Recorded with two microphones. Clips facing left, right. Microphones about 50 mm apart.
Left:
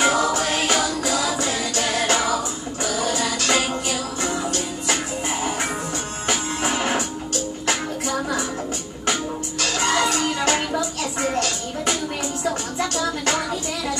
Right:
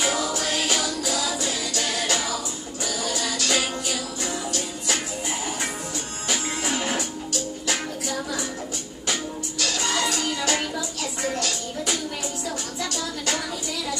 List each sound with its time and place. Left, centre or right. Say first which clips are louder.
0.0 s music: left 6 dB; left
6.2 s music: left 3 dB; left
9.6 s music: left 5 dB; left
11.3 s a sound: left 4 dB; left
12.4 s music: left 9 dB; left